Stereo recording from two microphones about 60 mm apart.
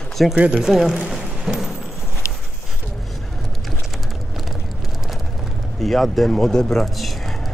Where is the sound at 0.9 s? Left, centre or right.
Centre.